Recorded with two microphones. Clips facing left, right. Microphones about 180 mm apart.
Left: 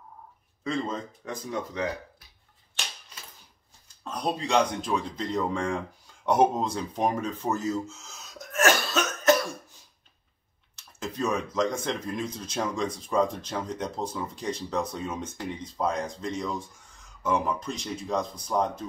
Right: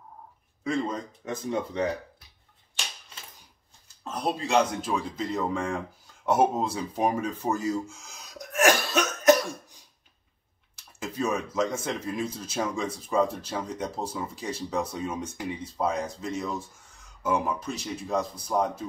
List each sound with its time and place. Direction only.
0.7 s speech: 15° right (ahead or behind); by 1.9 s 30° right (ahead or behind)
4.0 s speech: 5° right (ahead or behind)
6.2 s a sound: 5° right (ahead or behind)
10.8 s speech: 10° right (ahead or behind)